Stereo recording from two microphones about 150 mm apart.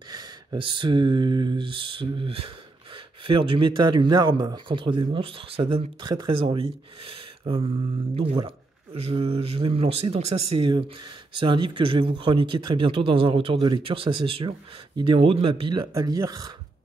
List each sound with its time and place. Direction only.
0.1 s a man's voice: 25° right (ahead or behind)